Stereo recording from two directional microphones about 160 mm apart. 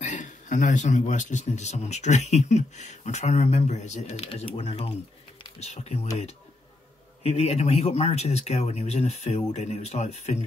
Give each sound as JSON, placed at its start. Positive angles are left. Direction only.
{"t": 0.0, "sound": "a man's voice", "side_deg": 50}
{"t": 4.3, "sound": "a man's voice", "side_deg": 35}
{"t": 7.2, "sound": "a man's voice", "side_deg": 40}